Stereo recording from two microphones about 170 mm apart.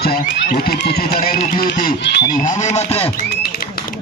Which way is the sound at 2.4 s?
45° left (ahead or behind).